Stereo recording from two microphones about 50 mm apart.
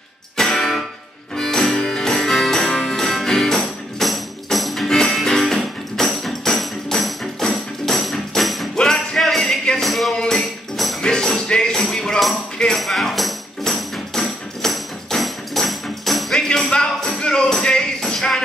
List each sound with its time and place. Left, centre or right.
0.4 s music: centre
8.7 s music: centre
10.1 s music: centre
12.7 s tambourine: centre
16.7 s music: centre